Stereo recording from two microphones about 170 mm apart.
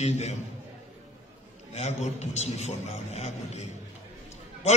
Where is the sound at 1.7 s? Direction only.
40° left (ahead or behind).